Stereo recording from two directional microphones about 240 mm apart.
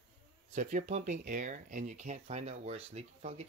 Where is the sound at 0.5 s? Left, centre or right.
Right.